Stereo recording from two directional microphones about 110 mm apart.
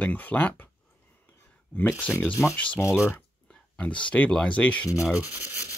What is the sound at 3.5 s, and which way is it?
Speech, 10° left (ahead or behind).